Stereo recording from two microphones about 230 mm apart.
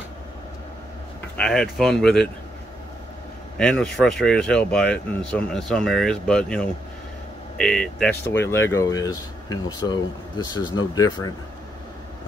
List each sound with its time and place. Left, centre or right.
1.3 s speech: centre
3.5 s speech: centre